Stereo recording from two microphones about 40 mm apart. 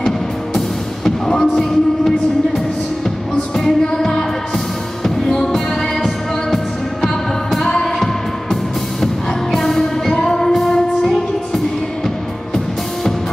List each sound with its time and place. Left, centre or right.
0.6 s music: centre
7.7 s music: centre